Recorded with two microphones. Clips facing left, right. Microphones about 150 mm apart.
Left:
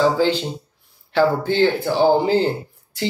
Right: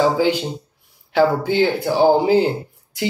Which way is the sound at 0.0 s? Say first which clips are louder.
Right 1 dB; 15° right (ahead or behind).